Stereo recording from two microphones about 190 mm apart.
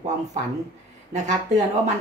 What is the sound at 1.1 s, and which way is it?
Speech, 40° right (ahead or behind).